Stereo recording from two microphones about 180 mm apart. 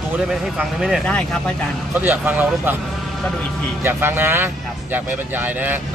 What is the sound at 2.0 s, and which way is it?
Speech, 10° right (ahead or behind).